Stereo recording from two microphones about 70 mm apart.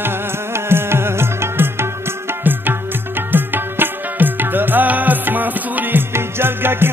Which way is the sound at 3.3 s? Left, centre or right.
Right.